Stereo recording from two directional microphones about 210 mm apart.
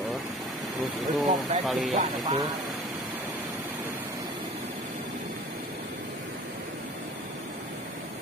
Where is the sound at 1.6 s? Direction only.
Centre (ahead or behind).